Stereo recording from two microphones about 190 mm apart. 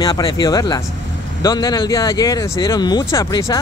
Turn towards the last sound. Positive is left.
turn(degrees=20)  # may be behind; listen again after turning